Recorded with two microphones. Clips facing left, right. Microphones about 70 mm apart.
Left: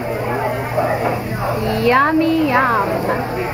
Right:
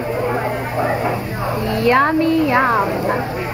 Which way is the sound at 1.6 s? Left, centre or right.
Right.